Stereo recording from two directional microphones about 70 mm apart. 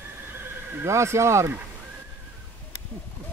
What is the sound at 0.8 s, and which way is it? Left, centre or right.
Speech, right.